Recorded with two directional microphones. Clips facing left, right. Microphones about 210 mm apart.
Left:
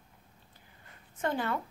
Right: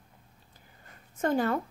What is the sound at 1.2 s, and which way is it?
Speech, 40° right (ahead or behind).